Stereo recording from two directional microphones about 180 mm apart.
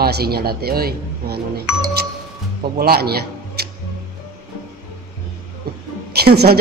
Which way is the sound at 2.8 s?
60° right (ahead or behind).